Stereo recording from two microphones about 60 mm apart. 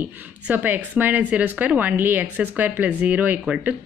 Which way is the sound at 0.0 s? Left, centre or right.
Right.